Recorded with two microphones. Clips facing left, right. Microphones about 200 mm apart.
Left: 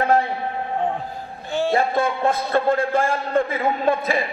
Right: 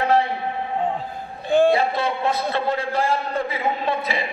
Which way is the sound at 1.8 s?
50° left (ahead or behind).